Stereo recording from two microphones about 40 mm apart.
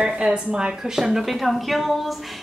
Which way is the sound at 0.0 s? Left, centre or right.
Right.